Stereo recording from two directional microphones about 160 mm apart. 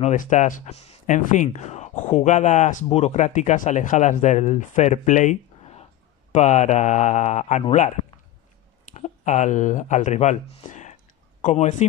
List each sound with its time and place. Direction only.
0.0 s speech: 50° left (ahead or behind)
8.9 s speech: 45° left (ahead or behind)